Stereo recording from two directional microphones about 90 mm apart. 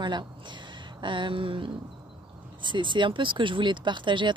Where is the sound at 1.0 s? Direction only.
65° right (ahead or behind).